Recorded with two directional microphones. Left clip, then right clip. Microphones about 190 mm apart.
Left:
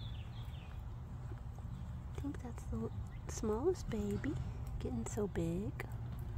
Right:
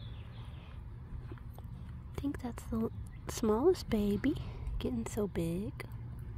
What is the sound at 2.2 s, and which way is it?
A woman's voice, 25° right (ahead or behind).